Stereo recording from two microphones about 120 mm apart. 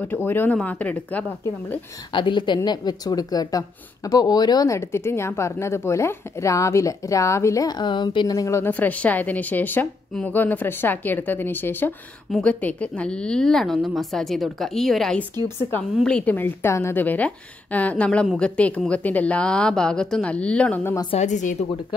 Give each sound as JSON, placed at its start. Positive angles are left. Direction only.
{"t": 0.0, "sound": "a woman's voice", "side_deg": 15}
{"t": 2.1, "sound": "speech", "side_deg": 40}
{"t": 8.7, "sound": "a woman's voice", "side_deg": 15}
{"t": 21.2, "sound": "a woman's voice", "side_deg": 90}